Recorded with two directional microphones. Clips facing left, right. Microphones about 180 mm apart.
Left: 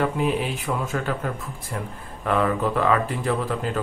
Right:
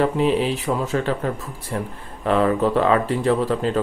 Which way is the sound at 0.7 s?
35° right (ahead or behind).